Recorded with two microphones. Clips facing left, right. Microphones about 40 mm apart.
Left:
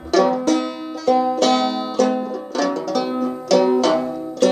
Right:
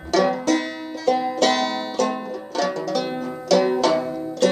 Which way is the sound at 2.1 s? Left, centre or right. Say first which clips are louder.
Left 5 dB; centre.